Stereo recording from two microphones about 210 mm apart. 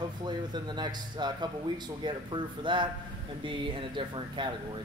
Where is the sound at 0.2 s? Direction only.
20° right (ahead or behind).